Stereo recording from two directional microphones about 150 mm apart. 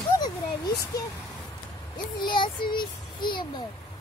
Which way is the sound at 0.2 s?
25° left (ahead or behind).